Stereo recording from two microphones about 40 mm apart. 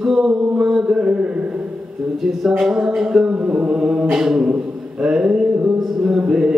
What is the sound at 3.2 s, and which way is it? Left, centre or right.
Mantra, right.